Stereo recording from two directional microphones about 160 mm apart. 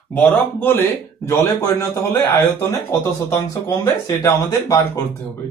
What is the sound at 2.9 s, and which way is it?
Speech, 15° left (ahead or behind).